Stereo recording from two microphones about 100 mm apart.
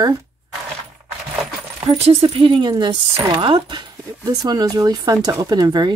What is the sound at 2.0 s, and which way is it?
Speech, 70° right (ahead or behind).